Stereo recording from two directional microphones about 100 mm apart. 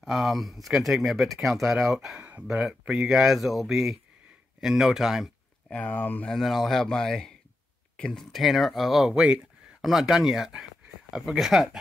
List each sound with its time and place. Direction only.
0.0 s speech: centre (ahead or behind)
2.1 s speech: 15° right (ahead or behind)
2.5 s speech: centre (ahead or behind)
5.7 s speech: 15° left (ahead or behind)
6.2 s speech: 5° left (ahead or behind)